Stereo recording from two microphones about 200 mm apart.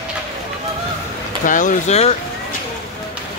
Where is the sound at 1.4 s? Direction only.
40° left (ahead or behind).